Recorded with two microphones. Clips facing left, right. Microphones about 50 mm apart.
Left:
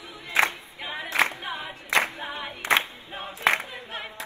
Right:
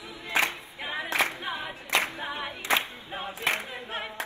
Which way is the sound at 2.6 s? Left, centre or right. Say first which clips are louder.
Left 4 dB; left.